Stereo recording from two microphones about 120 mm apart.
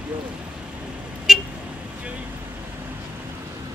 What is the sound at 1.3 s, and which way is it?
Vehicle, 5° right (ahead or behind).